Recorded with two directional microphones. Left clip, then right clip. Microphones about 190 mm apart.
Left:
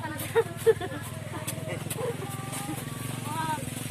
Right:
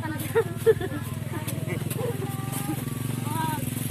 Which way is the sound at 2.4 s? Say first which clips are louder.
Right 2 dB; 50° right (ahead or behind).